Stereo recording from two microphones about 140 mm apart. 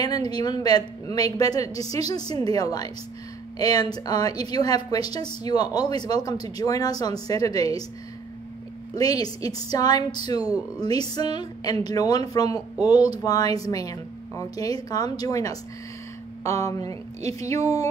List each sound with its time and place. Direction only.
0.0 s a woman's voice: 30° left (ahead or behind)
8.9 s a woman's voice: 25° left (ahead or behind)